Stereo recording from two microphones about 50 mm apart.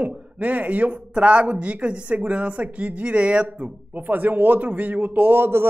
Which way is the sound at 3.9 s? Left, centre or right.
Right.